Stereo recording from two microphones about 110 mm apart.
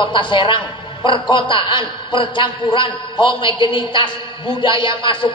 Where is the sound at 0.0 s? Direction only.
45° left (ahead or behind).